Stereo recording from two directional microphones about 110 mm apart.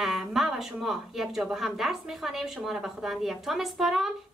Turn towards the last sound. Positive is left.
turn(degrees=0)  # may be behind; listen again after turning